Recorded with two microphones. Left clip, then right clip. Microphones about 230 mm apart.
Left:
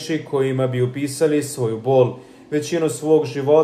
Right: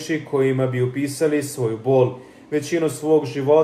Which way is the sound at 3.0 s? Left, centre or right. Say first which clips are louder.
Left 1 dB; centre.